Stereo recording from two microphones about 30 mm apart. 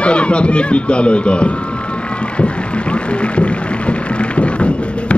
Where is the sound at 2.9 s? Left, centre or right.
Left.